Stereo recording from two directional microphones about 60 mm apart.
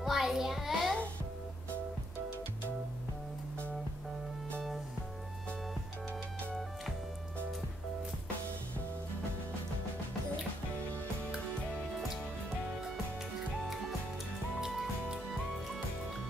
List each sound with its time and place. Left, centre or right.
0.0 s child singing: centre
14.6 s music: centre